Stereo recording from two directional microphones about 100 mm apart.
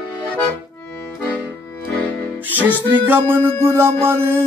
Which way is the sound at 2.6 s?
20° right (ahead or behind).